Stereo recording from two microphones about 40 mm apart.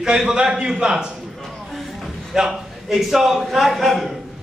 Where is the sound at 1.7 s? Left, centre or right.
Centre.